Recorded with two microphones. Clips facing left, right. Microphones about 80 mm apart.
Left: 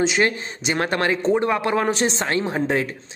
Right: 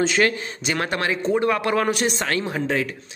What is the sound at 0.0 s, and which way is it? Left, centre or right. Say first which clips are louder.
Speech: even; left.